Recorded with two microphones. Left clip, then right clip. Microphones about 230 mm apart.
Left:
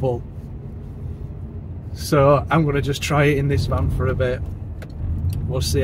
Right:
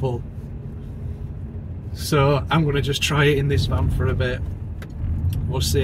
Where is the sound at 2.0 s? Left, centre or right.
Centre.